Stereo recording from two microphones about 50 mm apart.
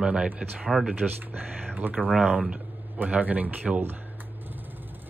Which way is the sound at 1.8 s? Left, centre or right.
Right.